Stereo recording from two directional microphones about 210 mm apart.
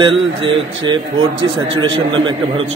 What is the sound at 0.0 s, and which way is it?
Speech, 25° right (ahead or behind).